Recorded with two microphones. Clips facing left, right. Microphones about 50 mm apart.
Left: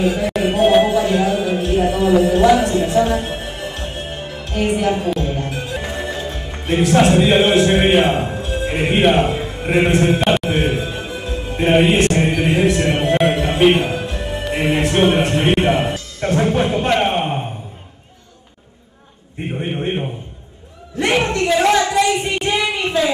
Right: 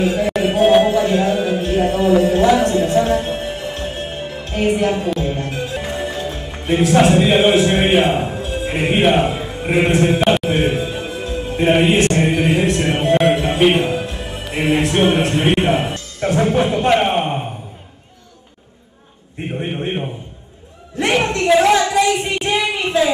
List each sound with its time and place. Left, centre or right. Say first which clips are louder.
0.0 s speech: right 1 dB; centre
1.5 s music: even; centre
2.4 s a man's voice: left 1 dB; centre
2.9 s music: right 1 dB; centre
4.5 s a man's voice: right 1 dB; centre
5.5 s music: right 1 dB; centre
19.6 s a man's voice: left 1 dB; centre
21.0 s a sound: even; centre